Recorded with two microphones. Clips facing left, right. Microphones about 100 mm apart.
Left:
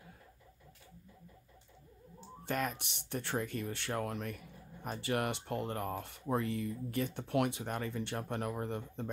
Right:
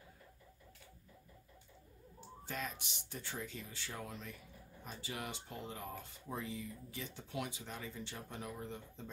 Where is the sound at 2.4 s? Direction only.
55° left (ahead or behind).